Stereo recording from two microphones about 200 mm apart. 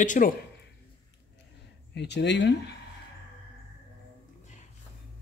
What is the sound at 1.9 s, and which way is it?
Speech, 60° left (ahead or behind).